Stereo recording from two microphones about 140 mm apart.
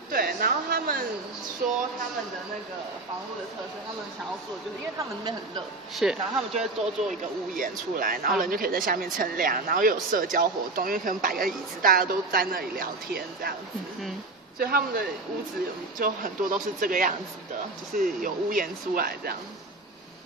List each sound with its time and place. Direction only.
0.1 s a sound: 90° right
5.9 s speech: centre (ahead or behind)
7.5 s speech: 80° right
14.6 s speech: 90° right